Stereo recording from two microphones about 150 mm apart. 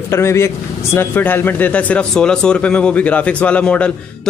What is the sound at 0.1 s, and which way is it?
A man's voice, 15° left (ahead or behind).